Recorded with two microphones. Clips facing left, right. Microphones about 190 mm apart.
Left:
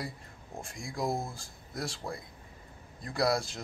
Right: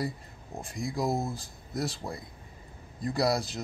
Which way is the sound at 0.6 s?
Centre (ahead or behind).